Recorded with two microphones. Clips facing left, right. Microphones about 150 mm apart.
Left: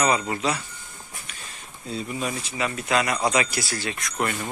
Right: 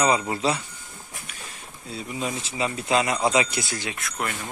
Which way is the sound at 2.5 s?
25° right (ahead or behind).